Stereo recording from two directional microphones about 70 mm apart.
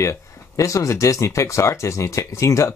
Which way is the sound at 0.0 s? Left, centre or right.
Left.